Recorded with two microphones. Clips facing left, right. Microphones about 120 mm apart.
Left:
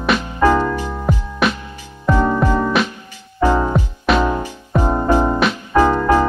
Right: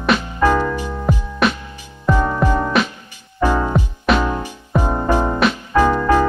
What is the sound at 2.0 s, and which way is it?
Music, 15° right (ahead or behind).